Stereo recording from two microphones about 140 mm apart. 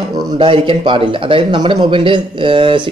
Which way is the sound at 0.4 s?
35° right (ahead or behind).